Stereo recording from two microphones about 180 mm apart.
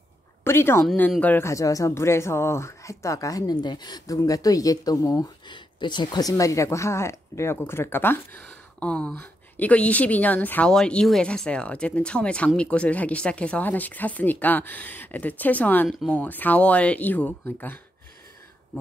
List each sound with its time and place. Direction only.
0.4 s a woman's voice: 15° left (ahead or behind)